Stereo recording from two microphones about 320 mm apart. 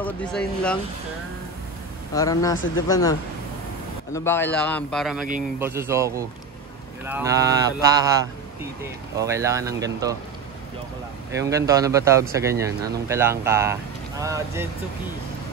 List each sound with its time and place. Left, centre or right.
0.0 s a man's voice: centre
2.1 s a man's voice: centre
11.3 s a man's voice: centre